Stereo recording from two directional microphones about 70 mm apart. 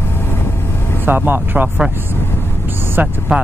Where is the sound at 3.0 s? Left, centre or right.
Right.